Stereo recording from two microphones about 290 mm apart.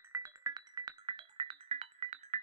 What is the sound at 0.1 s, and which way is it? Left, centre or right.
Music, centre.